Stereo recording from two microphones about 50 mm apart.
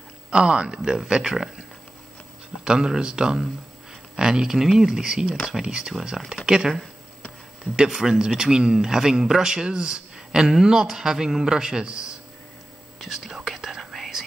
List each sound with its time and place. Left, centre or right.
0.3 s speech: centre
2.6 s speech: centre
5.6 s speech: centre
7.9 s speech: centre
13.0 s whispering: centre